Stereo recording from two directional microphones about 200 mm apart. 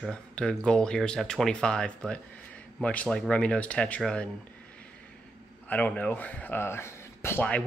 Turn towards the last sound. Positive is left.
turn(degrees=10)  # may be behind; listen again after turning